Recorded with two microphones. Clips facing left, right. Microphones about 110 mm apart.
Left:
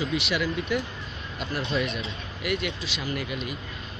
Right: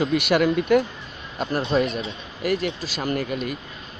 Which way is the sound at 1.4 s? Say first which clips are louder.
Right 7 dB; 40° right (ahead or behind).